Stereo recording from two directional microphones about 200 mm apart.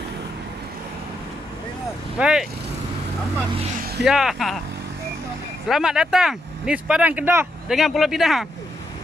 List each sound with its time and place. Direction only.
2.1 s speech: 5° right (ahead or behind)
4.0 s speech: 5° right (ahead or behind)
5.7 s speech: 5° right (ahead or behind)